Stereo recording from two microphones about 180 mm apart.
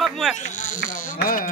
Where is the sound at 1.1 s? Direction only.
55° left (ahead or behind).